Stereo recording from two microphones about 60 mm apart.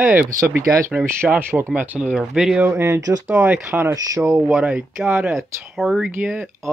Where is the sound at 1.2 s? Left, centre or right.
Right.